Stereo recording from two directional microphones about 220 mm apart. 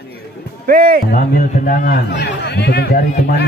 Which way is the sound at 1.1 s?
40° left (ahead or behind).